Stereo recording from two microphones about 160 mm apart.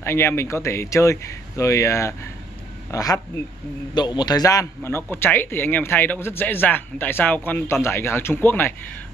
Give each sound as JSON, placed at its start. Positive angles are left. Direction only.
{"t": 0.0, "sound": "a man's voice", "side_deg": 15}